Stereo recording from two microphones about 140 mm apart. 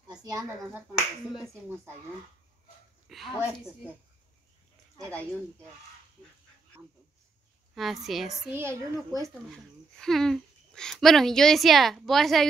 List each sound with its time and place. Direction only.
0.2 s speech: 25° right (ahead or behind)
0.7 s a child's voice: 5° right (ahead or behind)
3.1 s a child's voice: centre (ahead or behind)
7.7 s a child's voice: centre (ahead or behind)
8.5 s a child's voice: 15° right (ahead or behind)
9.9 s a child's voice: 5° left (ahead or behind)